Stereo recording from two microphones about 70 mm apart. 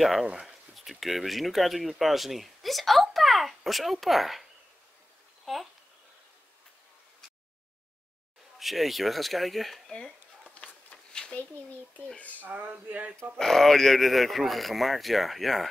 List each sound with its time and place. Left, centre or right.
0.0 s speech: centre
8.5 s speech: centre
10.6 s a sound: centre
12.2 s speech: left
12.4 s speech: right
13.4 s speech: centre